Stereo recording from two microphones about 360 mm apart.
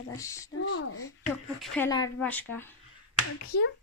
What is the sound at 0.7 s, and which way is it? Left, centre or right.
Speech, left.